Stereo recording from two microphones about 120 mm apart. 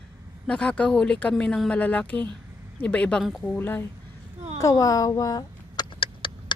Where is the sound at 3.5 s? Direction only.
15° left (ahead or behind).